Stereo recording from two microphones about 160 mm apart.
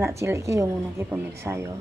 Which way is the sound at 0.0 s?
20° right (ahead or behind).